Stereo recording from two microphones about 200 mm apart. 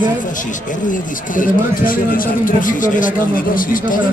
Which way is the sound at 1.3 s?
45° left (ahead or behind).